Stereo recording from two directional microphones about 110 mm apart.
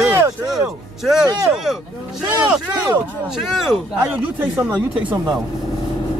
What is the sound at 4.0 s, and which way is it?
Speech, 25° right (ahead or behind).